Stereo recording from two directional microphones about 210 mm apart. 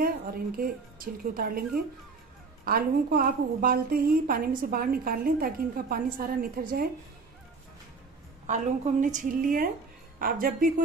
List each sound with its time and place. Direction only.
0.0 s a woman's voice: 45° right (ahead or behind)
2.6 s a woman's voice: 45° right (ahead or behind)
9.0 s a woman's voice: 40° right (ahead or behind)